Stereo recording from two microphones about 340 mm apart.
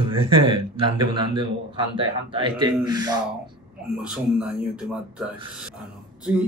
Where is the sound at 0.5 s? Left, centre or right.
Centre.